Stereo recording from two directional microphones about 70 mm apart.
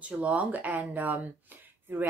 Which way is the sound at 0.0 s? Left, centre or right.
Centre.